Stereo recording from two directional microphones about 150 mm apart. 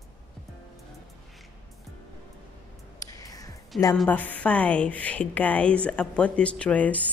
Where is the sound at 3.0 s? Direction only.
25° left (ahead or behind).